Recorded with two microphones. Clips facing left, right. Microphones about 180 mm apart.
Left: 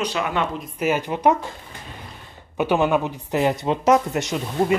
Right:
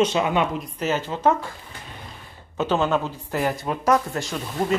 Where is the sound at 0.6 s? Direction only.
10° left (ahead or behind).